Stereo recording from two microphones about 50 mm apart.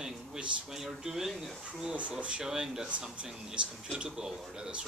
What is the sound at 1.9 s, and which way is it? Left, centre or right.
Speech, right.